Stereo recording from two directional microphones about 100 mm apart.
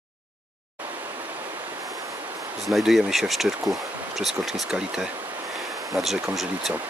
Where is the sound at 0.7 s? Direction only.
20° right (ahead or behind).